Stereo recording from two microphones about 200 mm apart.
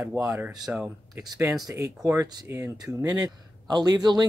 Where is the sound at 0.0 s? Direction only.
10° right (ahead or behind).